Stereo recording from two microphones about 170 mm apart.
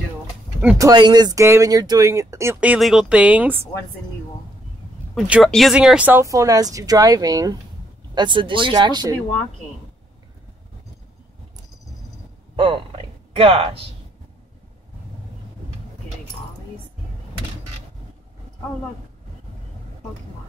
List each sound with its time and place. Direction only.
0.7 s speech: 25° right (ahead or behind)
5.1 s speech: 5° right (ahead or behind); by 9.1 s 25° right (ahead or behind)
12.5 s speech: 30° right (ahead or behind)